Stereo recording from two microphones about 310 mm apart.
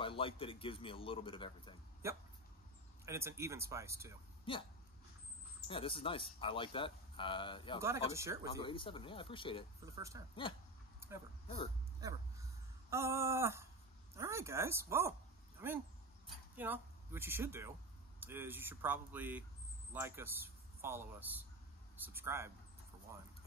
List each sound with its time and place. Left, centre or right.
0.0 s speech: centre
2.0 s speech: centre
4.5 s speech: centre
5.7 s speech: centre
7.8 s speech: centre
8.5 s speech: centre
9.9 s speech: centre
12.0 s a sound: centre
12.9 s speech: centre
16.5 s speech: centre